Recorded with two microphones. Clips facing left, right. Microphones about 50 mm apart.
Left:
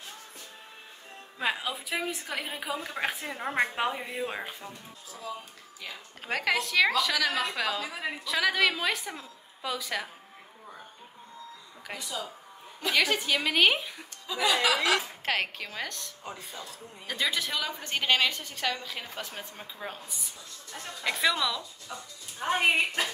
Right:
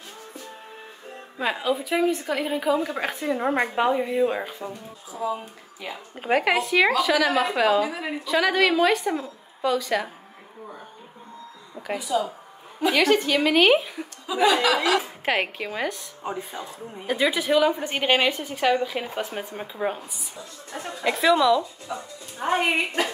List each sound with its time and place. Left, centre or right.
1.4 s a woman's voice: centre
3.3 s a woman's voice: right
3.7 s a woman's voice: centre
5.1 s speech: right
8.3 s a woman's voice: centre
11.9 s a woman's voice: centre